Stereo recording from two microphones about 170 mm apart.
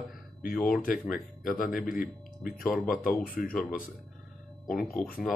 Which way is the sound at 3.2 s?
55° left (ahead or behind).